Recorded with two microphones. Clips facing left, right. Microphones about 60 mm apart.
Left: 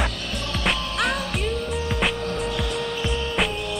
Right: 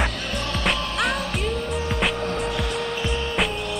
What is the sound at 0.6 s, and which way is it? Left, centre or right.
Music, centre.